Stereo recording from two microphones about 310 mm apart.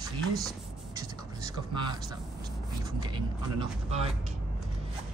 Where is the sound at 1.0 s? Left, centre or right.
Centre.